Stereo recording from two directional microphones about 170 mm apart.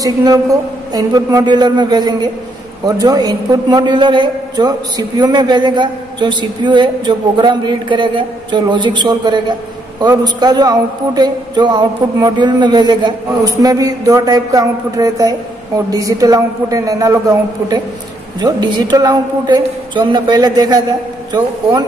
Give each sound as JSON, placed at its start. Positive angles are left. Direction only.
{"t": 0.0, "sound": "a man's voice", "side_deg": -20}